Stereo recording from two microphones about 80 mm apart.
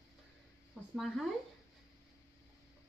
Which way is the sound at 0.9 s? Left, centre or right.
Centre.